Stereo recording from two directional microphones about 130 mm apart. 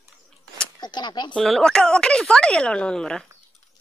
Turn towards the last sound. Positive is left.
turn(degrees=5)  # may be behind; listen again after turning